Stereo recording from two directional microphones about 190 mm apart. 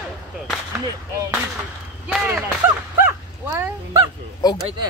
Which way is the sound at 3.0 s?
15° right (ahead or behind).